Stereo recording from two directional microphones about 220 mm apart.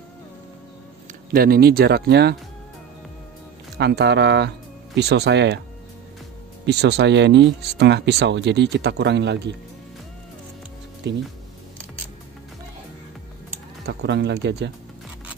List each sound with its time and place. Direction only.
1.3 s speech: 45° right (ahead or behind)
3.7 s speech: 50° right (ahead or behind)
6.6 s speech: 50° right (ahead or behind)
11.0 s speech: 50° right (ahead or behind)
13.8 s speech: 50° right (ahead or behind)